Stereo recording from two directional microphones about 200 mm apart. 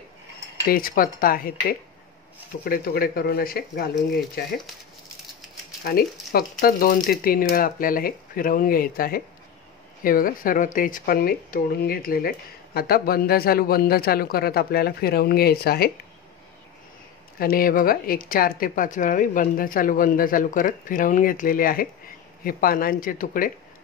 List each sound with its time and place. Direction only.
0.7 s speech: 45° left (ahead or behind)
5.9 s speech: 50° left (ahead or behind)
17.4 s speech: 45° left (ahead or behind)